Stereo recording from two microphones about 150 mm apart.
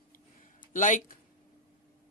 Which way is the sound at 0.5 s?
60° left (ahead or behind).